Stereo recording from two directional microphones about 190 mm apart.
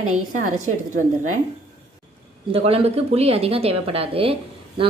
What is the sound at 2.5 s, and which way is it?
Speech, 30° right (ahead or behind).